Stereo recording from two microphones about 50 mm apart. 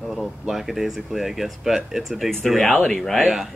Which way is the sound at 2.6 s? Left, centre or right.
Left.